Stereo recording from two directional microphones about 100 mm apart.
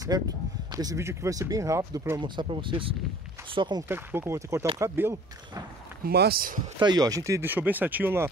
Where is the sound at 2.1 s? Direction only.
50° right (ahead or behind).